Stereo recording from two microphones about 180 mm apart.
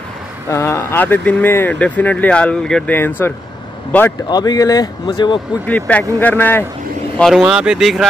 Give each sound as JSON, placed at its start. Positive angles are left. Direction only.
{"t": 0.5, "sound": "speech", "side_deg": 15}
{"t": 4.3, "sound": "speech", "side_deg": 20}
{"t": 5.7, "sound": "speech", "side_deg": 10}
{"t": 7.2, "sound": "speech", "side_deg": 0}